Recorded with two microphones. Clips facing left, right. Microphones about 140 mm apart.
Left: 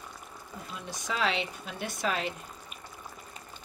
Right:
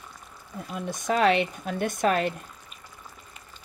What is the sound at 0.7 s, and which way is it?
Speech, 50° right (ahead or behind).